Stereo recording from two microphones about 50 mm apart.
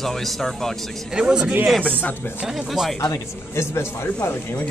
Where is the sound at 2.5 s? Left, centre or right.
Centre.